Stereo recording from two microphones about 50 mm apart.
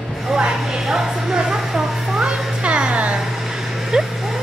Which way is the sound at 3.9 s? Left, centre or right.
Centre.